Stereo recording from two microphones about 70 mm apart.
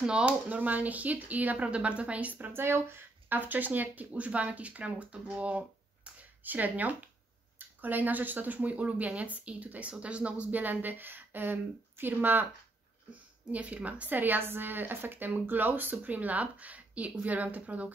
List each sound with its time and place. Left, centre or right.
0.0 s speech: centre